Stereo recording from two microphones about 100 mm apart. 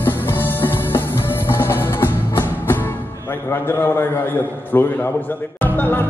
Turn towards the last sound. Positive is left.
turn(degrees=20)  # may be behind; listen again after turning